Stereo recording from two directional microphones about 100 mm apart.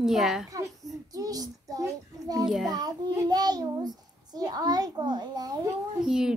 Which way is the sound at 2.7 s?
40° right (ahead or behind).